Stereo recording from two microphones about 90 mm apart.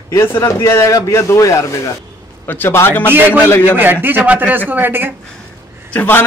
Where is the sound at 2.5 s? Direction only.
25° left (ahead or behind).